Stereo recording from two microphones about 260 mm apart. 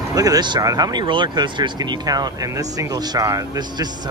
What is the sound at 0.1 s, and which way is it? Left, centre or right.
Speech, centre.